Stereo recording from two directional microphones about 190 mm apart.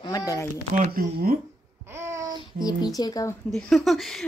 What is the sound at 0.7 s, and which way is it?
Speech, 45° right (ahead or behind).